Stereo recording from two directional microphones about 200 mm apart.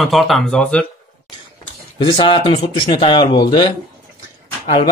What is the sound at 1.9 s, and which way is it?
Speech, 25° left (ahead or behind).